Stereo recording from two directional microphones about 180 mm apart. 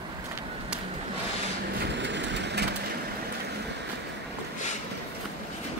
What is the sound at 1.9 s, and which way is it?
Vehicle, 80° right.